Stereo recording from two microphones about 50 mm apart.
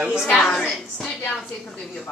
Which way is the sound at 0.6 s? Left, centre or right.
Centre.